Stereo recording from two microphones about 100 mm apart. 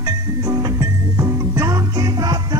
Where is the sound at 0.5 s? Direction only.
35° right (ahead or behind).